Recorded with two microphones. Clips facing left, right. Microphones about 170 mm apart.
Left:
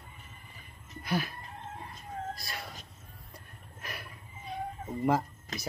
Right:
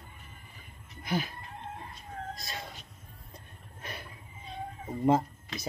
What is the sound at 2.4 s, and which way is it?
Cat, 20° right (ahead or behind).